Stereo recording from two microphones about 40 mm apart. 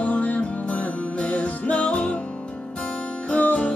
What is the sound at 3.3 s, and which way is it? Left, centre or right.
Music, left.